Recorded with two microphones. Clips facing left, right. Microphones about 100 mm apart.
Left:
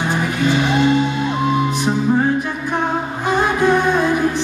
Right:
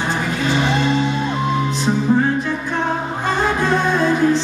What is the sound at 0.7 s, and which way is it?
Music, 15° left (ahead or behind).